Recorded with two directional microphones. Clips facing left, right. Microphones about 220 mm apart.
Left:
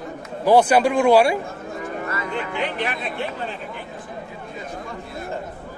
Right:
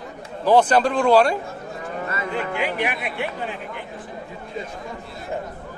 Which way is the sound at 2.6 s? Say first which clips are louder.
Right 1 dB; 10° right (ahead or behind).